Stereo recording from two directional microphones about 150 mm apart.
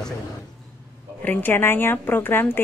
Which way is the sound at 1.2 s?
15° left (ahead or behind).